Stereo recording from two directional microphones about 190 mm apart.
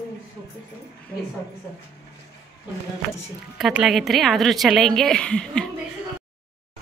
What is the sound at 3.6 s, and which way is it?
A woman's voice, centre (ahead or behind).